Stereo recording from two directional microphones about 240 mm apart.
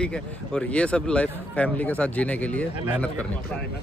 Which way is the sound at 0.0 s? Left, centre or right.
Centre.